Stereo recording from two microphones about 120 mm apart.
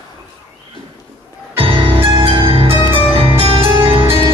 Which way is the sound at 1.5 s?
50° right (ahead or behind).